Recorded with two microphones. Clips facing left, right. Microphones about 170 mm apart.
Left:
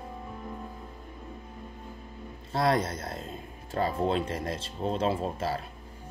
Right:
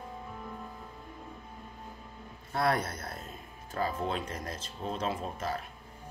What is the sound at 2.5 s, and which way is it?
Speech, 25° left (ahead or behind).